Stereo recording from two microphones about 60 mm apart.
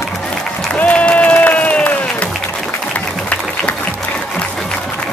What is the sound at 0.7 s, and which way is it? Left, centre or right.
Applause, left.